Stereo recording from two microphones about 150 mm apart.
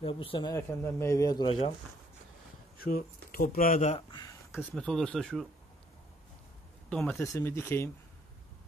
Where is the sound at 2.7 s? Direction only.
80° left; by 4.0 s 60° left (ahead or behind).